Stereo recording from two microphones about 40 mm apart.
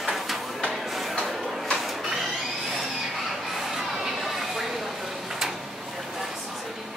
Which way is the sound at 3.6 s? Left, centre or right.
Centre.